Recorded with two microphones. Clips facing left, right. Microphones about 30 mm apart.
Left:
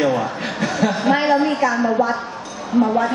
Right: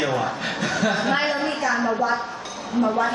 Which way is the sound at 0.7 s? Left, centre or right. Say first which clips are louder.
Left 4 dB; centre.